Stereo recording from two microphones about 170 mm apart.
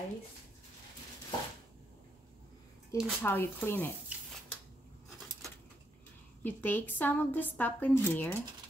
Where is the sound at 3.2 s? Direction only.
10° left (ahead or behind).